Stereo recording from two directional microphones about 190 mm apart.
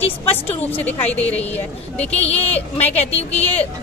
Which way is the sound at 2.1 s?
35° left (ahead or behind).